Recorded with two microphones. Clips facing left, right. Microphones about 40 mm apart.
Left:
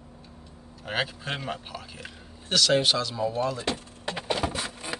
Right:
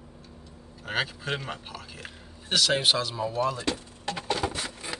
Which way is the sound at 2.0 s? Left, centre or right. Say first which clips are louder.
Even; centre.